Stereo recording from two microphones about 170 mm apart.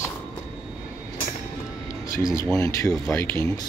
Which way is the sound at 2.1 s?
20° left (ahead or behind).